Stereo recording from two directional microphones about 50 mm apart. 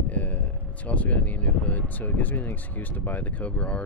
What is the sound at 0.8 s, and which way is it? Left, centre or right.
Speech, left.